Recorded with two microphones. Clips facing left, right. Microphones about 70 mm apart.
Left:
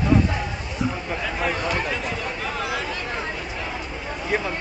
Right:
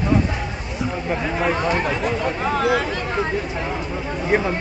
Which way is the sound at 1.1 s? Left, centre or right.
Centre.